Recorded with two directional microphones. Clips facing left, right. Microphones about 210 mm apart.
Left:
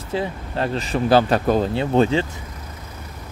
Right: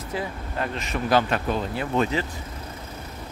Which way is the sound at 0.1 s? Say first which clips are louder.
Left 6 dB; 30° left (ahead or behind).